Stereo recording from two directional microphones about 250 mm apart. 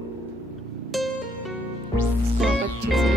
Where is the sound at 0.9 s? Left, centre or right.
Centre.